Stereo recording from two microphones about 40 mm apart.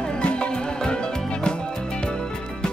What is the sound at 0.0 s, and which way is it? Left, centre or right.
Music, left.